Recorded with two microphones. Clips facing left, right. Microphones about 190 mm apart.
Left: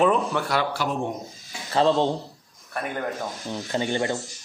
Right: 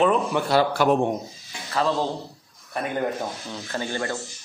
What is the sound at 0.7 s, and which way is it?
Speech, 55° right (ahead or behind).